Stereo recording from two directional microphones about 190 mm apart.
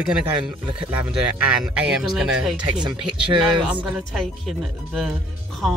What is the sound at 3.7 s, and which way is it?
Speech, 5° right (ahead or behind).